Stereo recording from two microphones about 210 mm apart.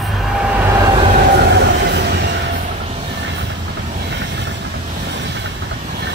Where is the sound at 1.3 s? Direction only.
55° right (ahead or behind).